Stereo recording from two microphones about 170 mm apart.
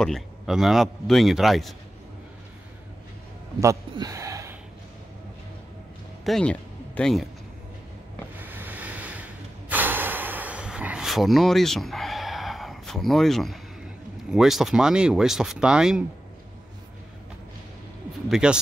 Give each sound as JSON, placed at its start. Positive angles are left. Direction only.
{"t": 0.0, "sound": "a man's voice", "side_deg": 0}
{"t": 3.6, "sound": "speech", "side_deg": -20}
{"t": 6.2, "sound": "speech", "side_deg": 5}
{"t": 8.4, "sound": "ocean", "side_deg": -10}
{"t": 9.7, "sound": "a sound", "side_deg": -10}
{"t": 14.3, "sound": "a man's voice", "side_deg": 0}
{"t": 18.3, "sound": "a man's voice", "side_deg": -5}